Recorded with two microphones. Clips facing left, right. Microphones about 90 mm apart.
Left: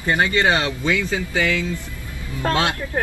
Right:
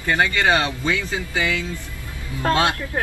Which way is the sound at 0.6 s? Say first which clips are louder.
Left 2 dB; 20° right (ahead or behind).